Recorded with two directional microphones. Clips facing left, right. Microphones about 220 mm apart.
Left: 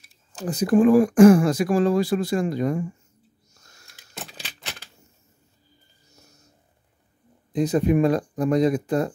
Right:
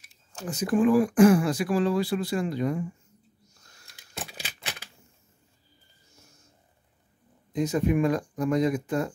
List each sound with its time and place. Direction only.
0.3 s speech: 35° left (ahead or behind)
4.3 s typewriter: 10° right (ahead or behind)
7.5 s speech: 35° left (ahead or behind)